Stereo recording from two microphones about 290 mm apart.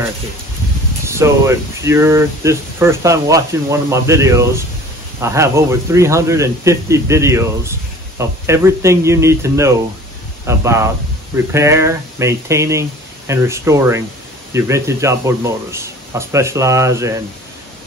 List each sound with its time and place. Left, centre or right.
1.0 s speech: centre